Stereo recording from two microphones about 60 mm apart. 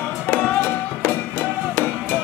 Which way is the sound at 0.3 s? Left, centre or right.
Left.